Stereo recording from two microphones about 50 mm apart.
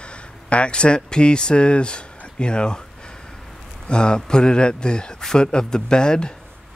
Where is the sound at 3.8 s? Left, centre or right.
Centre.